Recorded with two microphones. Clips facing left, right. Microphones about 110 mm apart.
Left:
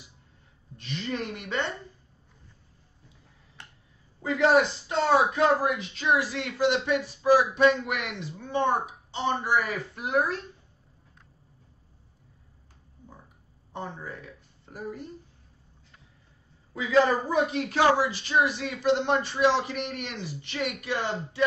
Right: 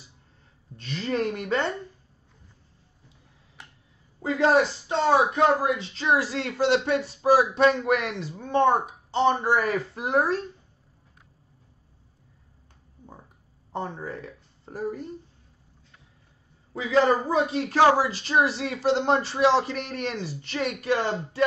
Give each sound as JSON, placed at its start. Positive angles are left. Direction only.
{"t": 0.8, "sound": "speech", "side_deg": -40}
{"t": 4.2, "sound": "speech", "side_deg": -30}
{"t": 13.7, "sound": "a woman's voice", "side_deg": -40}
{"t": 16.7, "sound": "speech", "side_deg": -30}